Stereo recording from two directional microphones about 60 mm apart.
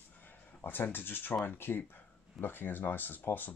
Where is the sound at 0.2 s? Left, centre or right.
Left.